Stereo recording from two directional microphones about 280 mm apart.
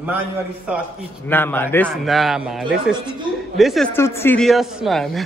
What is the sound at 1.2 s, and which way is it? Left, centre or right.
Speech, centre.